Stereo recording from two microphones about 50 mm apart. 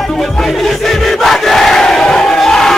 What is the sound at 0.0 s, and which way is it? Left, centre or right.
Crowd, centre.